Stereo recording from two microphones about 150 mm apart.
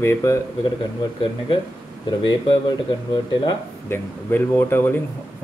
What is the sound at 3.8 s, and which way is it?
Speech, 15° left (ahead or behind).